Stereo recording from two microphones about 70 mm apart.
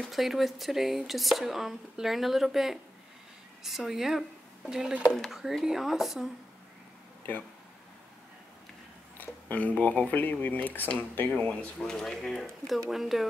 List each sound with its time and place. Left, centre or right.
0.1 s speech: centre
5.1 s speech: centre
9.2 s speech: left
11.3 s speech: centre